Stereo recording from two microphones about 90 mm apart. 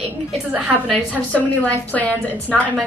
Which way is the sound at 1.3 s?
15° left (ahead or behind).